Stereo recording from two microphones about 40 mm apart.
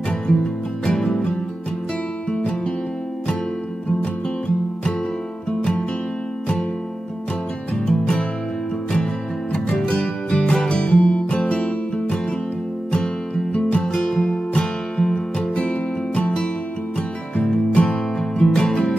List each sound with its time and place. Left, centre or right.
0.1 s music: left
2.3 s music: left
5.5 s music: left
7.7 s music: centre; by 13.8 s left
13.8 s music: centre
14.5 s music: left